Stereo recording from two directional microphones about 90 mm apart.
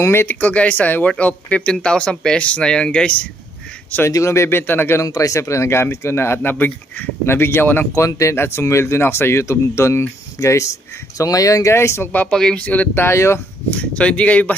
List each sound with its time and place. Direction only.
0.0 s speech: 25° left (ahead or behind)
4.1 s speech: 30° left (ahead or behind)
5.1 s speech: 40° left (ahead or behind); by 7.9 s 20° left (ahead or behind)
7.9 s speech: 35° left (ahead or behind)
12.1 s speech: 20° left (ahead or behind)
13.0 s speech: 30° left (ahead or behind)
13.7 s speech: 15° left (ahead or behind)